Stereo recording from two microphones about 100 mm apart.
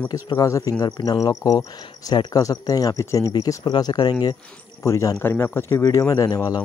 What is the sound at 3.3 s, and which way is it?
Speech, 45° left (ahead or behind).